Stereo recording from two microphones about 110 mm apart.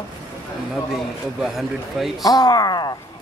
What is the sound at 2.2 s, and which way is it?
Speech, 35° left (ahead or behind).